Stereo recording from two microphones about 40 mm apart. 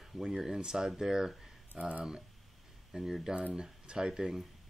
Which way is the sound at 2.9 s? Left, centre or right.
Right.